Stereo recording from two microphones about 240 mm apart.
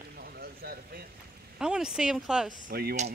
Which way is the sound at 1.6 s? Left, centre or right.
Centre.